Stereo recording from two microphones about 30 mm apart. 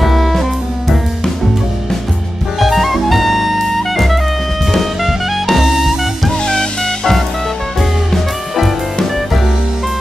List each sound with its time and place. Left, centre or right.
0.0 s music: centre
2.6 s jazz: centre
4.7 s music: centre
6.4 s music: left
8.1 s music: centre